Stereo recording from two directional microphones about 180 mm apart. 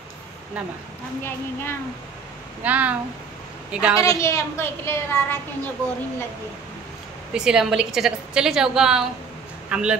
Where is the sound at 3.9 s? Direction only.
15° left (ahead or behind).